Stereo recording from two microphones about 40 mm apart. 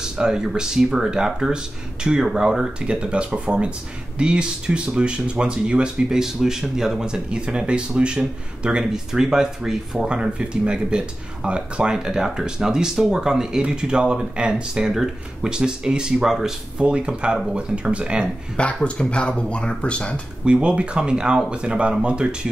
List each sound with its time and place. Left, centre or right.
0.0 s speech: centre
6.0 s speech: centre
10.0 s speech: right
16.3 s speech: centre
16.7 s speech: right
18.9 s speech: left
20.4 s speech: right